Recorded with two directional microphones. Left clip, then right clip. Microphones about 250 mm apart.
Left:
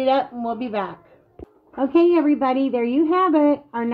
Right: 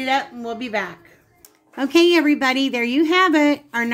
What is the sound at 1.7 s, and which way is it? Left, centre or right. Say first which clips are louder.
A woman's voice: right 1 dB; centre.